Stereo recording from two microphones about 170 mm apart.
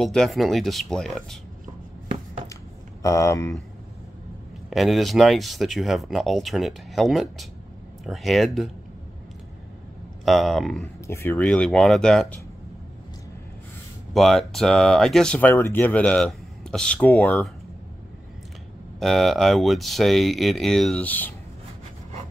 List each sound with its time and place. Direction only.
0.0 s speech: centre (ahead or behind)
2.4 s a sound: 20° left (ahead or behind)
4.6 s speech: centre (ahead or behind)
10.2 s speech: centre (ahead or behind)
11.1 s speech: 15° left (ahead or behind)
14.1 s speech: centre (ahead or behind)
18.9 s speech: centre (ahead or behind)